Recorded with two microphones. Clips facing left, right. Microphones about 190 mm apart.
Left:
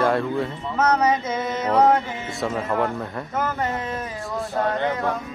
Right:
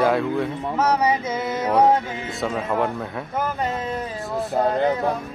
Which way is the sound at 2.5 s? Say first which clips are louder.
Even; centre (ahead or behind).